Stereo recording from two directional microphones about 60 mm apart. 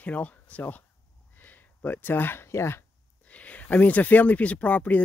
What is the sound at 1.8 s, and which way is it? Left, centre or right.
Speech, left.